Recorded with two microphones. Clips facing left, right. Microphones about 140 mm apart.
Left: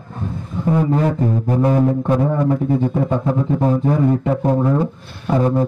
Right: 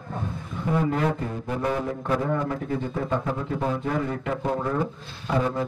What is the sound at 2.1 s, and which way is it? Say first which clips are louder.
A man's voice: left 8 dB; 30° left (ahead or behind).